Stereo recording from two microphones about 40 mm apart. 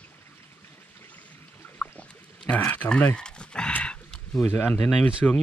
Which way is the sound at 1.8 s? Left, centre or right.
Left.